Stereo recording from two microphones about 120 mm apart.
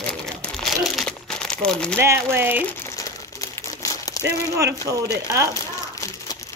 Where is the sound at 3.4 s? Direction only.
30° left (ahead or behind).